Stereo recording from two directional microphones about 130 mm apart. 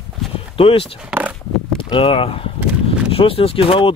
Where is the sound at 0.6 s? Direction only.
45° left (ahead or behind).